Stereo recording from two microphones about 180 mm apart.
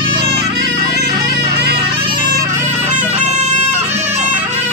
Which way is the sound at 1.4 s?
60° right (ahead or behind).